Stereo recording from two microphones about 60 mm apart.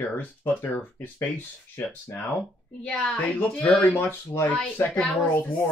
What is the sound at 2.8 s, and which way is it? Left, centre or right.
Speech, centre.